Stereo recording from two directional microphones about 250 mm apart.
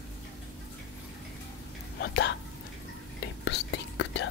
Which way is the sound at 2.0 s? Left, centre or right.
Left.